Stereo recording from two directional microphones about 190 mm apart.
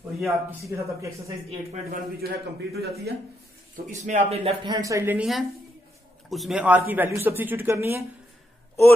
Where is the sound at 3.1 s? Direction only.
60° right (ahead or behind).